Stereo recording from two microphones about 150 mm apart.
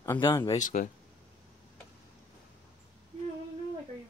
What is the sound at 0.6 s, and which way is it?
Speech, 55° left (ahead or behind).